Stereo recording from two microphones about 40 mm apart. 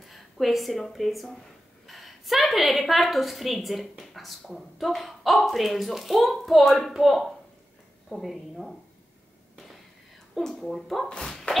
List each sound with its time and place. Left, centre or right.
0.0 s a woman's voice: centre
10.6 s speech: centre
11.1 s speech: centre